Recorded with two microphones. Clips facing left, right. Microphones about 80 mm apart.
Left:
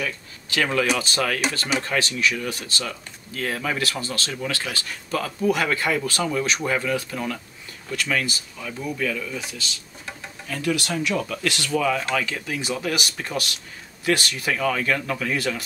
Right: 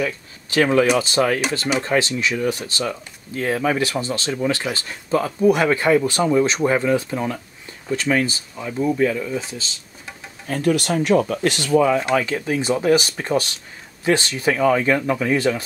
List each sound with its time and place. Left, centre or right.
0.0 s speech: right
10.4 s speech: right